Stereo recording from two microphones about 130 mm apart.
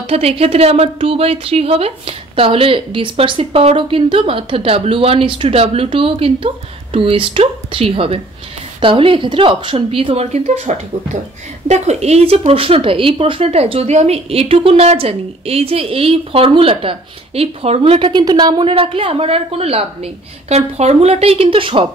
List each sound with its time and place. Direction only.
0.0 s a woman's voice: 50° right (ahead or behind)
18.2 s a woman's voice: 30° right (ahead or behind)